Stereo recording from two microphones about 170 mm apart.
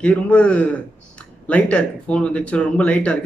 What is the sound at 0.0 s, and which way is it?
A man's voice, 5° left (ahead or behind).